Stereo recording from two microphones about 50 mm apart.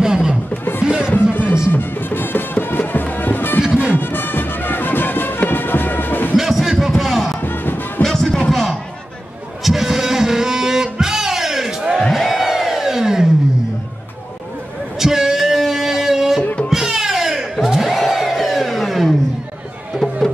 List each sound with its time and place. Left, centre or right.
0.0 s music: centre
1.7 s music: left
3.6 s music: centre
3.9 s music: left
6.3 s crowd: centre
6.7 s a sound: centre
7.3 s music: left
8.0 s music: centre
8.5 s a sound: centre
9.6 s music: centre
12.1 s crowd: centre
15.0 s a sound: centre
16.6 s crowd: centre